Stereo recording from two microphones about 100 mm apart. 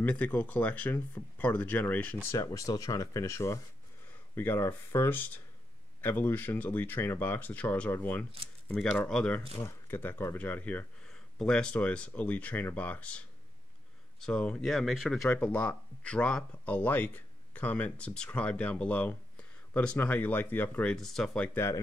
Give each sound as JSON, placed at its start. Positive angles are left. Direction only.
{"t": 0.0, "sound": "speech", "side_deg": 15}
{"t": 2.3, "sound": "speech", "side_deg": 35}
{"t": 9.7, "sound": "speech", "side_deg": 20}
{"t": 14.2, "sound": "speech", "side_deg": 10}
{"t": 15.2, "sound": "speech", "side_deg": 15}
{"t": 20.9, "sound": "speech", "side_deg": 5}